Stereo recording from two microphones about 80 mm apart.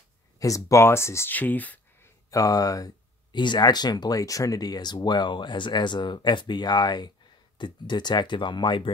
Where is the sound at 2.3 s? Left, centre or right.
Left.